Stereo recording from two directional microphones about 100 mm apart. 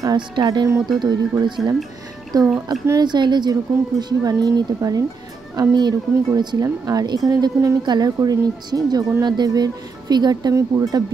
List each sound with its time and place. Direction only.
0.0 s speech: 40° right (ahead or behind)